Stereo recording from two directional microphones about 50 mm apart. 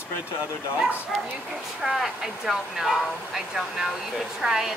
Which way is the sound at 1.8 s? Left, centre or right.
Centre.